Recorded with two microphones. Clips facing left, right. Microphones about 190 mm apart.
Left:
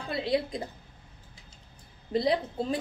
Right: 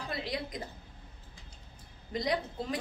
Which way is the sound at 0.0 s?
25° left (ahead or behind).